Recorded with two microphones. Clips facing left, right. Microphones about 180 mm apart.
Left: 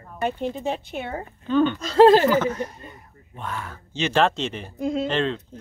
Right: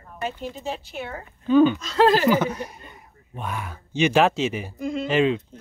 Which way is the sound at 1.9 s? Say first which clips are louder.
Left 8 dB; 30° left (ahead or behind).